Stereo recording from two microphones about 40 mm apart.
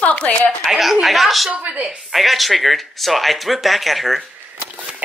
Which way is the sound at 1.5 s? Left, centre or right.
Right.